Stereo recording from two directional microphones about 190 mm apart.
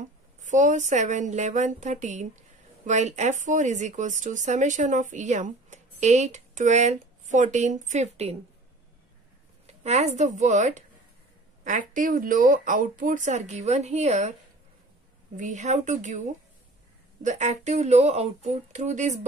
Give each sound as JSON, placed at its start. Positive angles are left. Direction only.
{"t": 0.4, "sound": "speech", "side_deg": -40}
{"t": 9.7, "sound": "speech", "side_deg": -35}
{"t": 15.3, "sound": "speech", "side_deg": -40}